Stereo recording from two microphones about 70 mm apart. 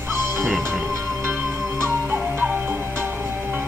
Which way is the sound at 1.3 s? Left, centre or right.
Right.